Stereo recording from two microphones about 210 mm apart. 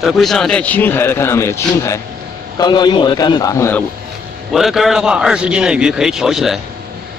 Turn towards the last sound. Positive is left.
turn(degrees=0)  # may be behind; listen again after turning